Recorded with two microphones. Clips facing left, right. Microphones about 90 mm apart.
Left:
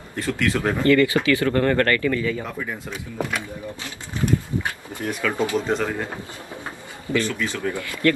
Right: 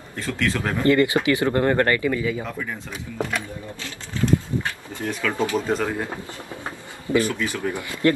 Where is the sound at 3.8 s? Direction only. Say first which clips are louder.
Right 2 dB; 20° left (ahead or behind).